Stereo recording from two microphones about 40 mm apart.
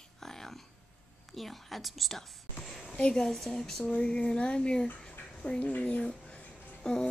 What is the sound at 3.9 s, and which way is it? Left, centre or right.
Speech, left.